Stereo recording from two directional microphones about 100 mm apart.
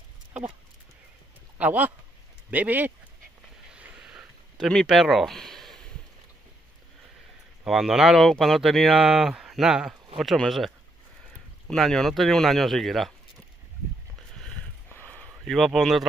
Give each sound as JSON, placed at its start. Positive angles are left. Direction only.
{"t": 1.6, "sound": "speech", "side_deg": -15}
{"t": 3.7, "sound": "a sound", "side_deg": -10}
{"t": 7.6, "sound": "speech", "side_deg": -5}
{"t": 11.7, "sound": "speech", "side_deg": 5}
{"t": 14.9, "sound": "a sound", "side_deg": 15}
{"t": 15.4, "sound": "speech", "side_deg": 0}